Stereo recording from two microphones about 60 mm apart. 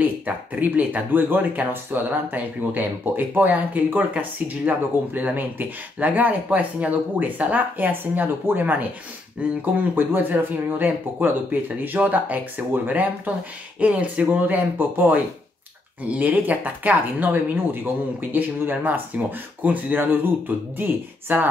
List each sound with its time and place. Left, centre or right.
0.0 s speech: right
9.9 s speech: right